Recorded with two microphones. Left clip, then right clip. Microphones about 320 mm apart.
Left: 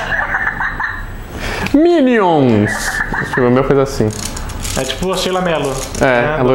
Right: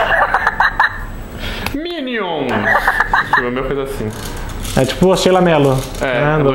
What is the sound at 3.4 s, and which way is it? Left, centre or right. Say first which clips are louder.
Speech: left 7 dB; left.